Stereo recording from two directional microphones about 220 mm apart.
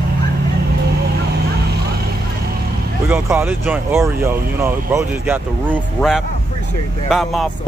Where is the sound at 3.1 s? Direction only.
10° right (ahead or behind).